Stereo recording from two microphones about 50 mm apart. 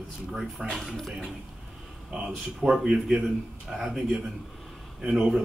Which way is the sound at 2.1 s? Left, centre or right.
Centre.